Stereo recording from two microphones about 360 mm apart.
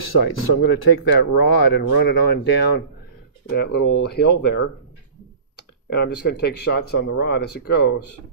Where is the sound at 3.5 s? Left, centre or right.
Left.